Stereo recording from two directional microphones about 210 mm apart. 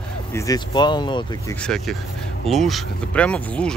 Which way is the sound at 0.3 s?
15° left (ahead or behind).